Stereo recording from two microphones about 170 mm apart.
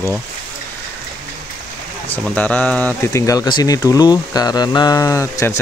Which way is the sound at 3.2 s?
25° left (ahead or behind).